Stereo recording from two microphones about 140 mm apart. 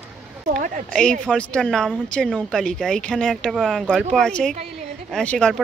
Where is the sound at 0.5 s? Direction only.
70° right (ahead or behind).